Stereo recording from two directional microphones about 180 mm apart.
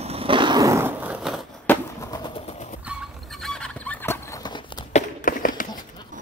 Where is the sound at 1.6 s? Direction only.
10° left (ahead or behind).